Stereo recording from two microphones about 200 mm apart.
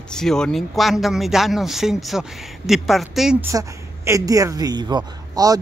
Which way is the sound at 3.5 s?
15° right (ahead or behind).